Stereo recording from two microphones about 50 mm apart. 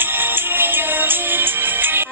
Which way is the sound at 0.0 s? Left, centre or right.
Right.